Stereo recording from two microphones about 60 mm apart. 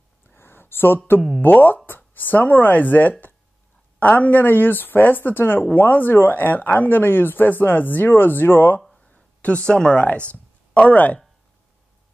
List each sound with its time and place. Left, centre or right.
0.3 s a sound: left
1.4 s speech: left
9.0 s speech: left